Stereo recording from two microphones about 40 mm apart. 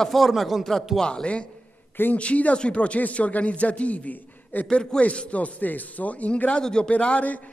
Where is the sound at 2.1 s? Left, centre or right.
Left.